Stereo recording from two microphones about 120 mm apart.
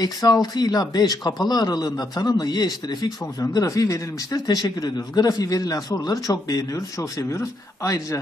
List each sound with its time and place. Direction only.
0.0 s speech: 35° left (ahead or behind)